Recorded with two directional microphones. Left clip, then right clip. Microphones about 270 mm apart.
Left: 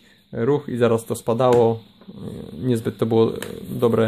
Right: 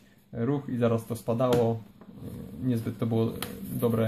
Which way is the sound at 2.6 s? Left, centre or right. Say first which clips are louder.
Left 9 dB; left.